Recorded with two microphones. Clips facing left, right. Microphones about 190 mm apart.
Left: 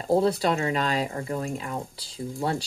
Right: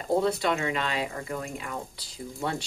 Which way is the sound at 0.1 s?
35° left (ahead or behind).